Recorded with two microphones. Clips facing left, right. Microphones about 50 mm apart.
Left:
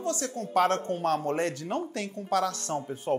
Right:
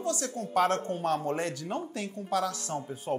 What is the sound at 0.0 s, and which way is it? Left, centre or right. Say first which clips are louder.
Speech: left 1 dB; left.